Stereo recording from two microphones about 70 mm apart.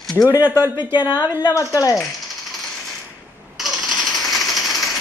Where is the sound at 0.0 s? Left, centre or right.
Centre.